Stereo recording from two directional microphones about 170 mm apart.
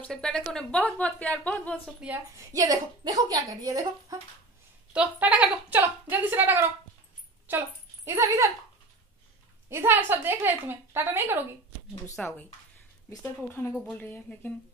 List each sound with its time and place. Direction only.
0.0 s a woman's voice: 5° left (ahead or behind)
2.0 s a woman's voice: 5° right (ahead or behind)
2.3 s a woman's voice: 20° right (ahead or behind)
4.9 s a woman's voice: 5° right (ahead or behind)
9.7 s a woman's voice: 15° right (ahead or behind)
12.2 s a woman's voice: 10° left (ahead or behind)